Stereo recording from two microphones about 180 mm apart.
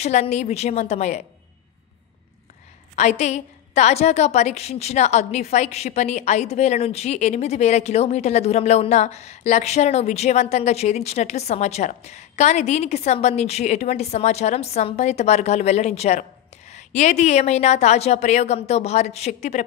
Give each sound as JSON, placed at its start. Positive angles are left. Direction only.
{"t": 0.0, "sound": "a woman's voice", "side_deg": 40}
{"t": 3.0, "sound": "a woman's voice", "side_deg": 40}